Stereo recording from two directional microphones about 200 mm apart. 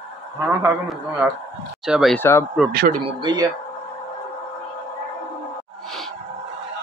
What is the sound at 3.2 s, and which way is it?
Speech, 20° right (ahead or behind).